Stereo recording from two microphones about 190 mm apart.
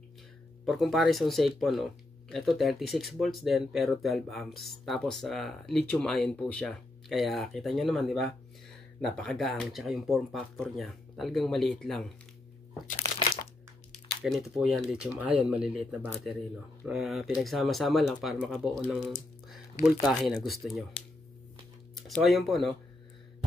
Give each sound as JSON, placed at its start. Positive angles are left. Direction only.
{"t": 0.7, "sound": "speech", "side_deg": 0}
{"t": 12.8, "sound": "crumpling", "side_deg": 50}
{"t": 14.2, "sound": "speech", "side_deg": -5}
{"t": 21.9, "sound": "speech", "side_deg": 0}